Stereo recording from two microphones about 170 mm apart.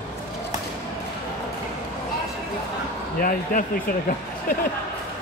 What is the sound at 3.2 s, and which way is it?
Speech, 55° left (ahead or behind).